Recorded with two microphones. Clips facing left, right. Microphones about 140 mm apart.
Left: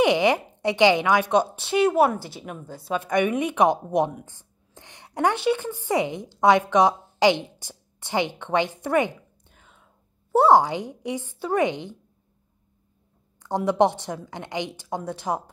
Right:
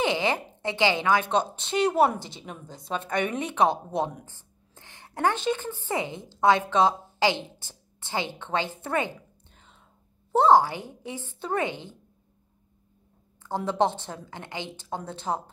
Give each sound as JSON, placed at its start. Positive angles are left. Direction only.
{"t": 0.0, "sound": "a woman's voice", "side_deg": 15}
{"t": 9.5, "sound": "whispering", "side_deg": 5}
{"t": 10.3, "sound": "a woman's voice", "side_deg": 10}
{"t": 13.4, "sound": "a woman's voice", "side_deg": 15}